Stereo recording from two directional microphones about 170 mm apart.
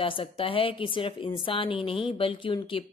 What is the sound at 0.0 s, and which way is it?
A woman's voice, 30° left (ahead or behind).